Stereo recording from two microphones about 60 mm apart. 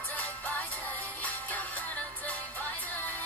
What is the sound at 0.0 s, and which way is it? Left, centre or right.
Music, left.